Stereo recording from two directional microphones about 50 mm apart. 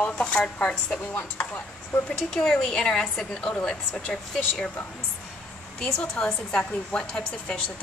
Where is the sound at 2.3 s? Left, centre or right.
Centre.